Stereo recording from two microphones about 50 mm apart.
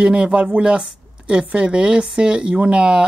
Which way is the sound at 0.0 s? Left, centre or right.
Right.